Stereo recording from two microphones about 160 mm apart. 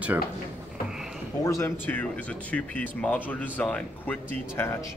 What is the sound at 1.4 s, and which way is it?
Speech, 20° left (ahead or behind).